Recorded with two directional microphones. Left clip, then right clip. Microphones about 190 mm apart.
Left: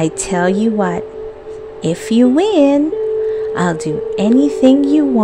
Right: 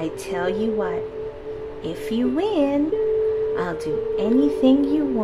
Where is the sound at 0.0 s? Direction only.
40° left (ahead or behind).